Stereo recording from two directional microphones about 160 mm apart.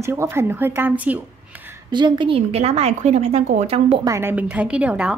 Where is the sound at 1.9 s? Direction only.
30° right (ahead or behind).